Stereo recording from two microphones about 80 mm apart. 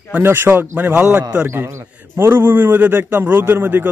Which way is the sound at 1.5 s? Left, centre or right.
Right.